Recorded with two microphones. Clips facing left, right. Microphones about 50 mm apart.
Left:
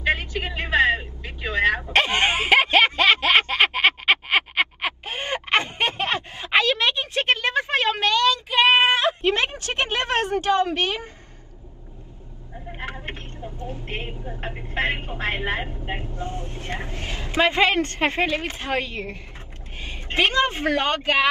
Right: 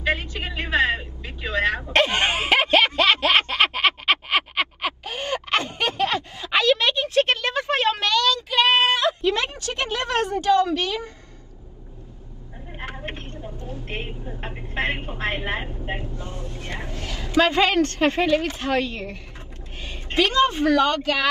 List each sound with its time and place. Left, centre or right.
0.0 s vehicle: left
1.8 s a sound: centre; by 11.1 s left
13.0 s vehicle: left
19.8 s speech: left